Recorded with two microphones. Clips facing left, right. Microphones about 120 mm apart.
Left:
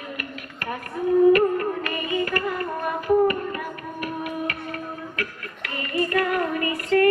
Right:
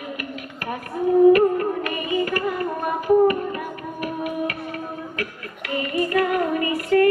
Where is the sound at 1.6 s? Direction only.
20° right (ahead or behind).